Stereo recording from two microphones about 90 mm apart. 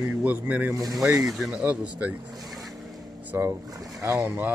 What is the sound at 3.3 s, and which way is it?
Speech, 30° right (ahead or behind).